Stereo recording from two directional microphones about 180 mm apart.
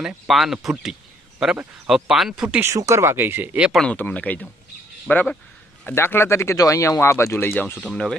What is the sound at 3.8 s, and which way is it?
Speech, 5° left (ahead or behind).